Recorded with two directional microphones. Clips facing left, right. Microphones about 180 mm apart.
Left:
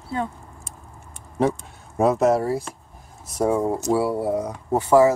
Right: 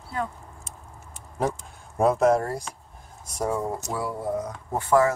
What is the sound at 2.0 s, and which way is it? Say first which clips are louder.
Speech: left 2 dB; centre (ahead or behind).